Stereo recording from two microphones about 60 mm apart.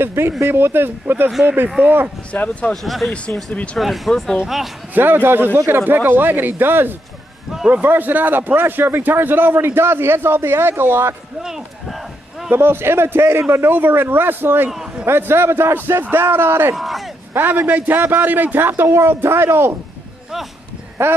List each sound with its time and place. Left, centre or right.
0.0 s a man's voice: right
2.3 s speech: left
2.7 s speech: centre
4.9 s a man's voice: right
11.4 s run: centre
12.5 s a man's voice: right
16.7 s speech: centre
17.3 s a man's voice: right
18.7 s speech: right
21.0 s speech: right